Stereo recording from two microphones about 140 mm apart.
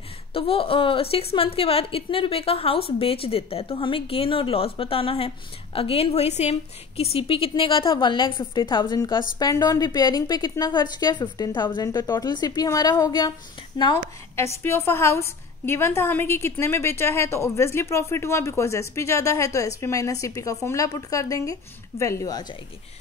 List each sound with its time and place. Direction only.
0.3 s a woman's voice: 40° left (ahead or behind)
14.3 s a woman's voice: 15° left (ahead or behind)